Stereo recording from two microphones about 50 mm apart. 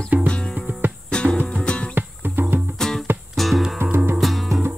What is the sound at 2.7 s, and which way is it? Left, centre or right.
Music, centre.